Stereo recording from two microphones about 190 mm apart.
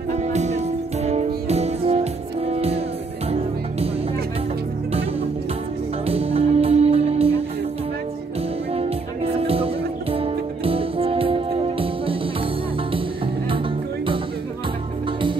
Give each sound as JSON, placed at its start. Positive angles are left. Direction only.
{"t": 0.1, "sound": "music", "side_deg": -35}
{"t": 6.0, "sound": "music", "side_deg": -30}
{"t": 8.7, "sound": "music", "side_deg": -30}